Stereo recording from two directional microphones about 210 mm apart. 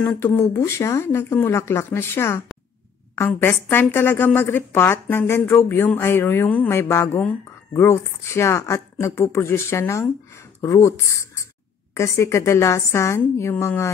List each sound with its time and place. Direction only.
0.0 s a woman's voice: 10° left (ahead or behind)